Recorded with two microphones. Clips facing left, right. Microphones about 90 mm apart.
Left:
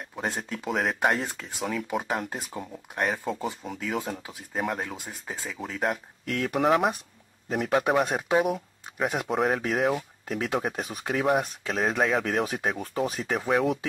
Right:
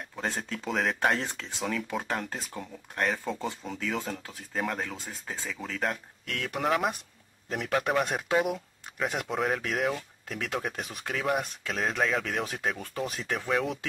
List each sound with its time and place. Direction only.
0.1 s speech: 15° left (ahead or behind)
6.7 s speech: 30° left (ahead or behind)
7.7 s speech: 10° left (ahead or behind)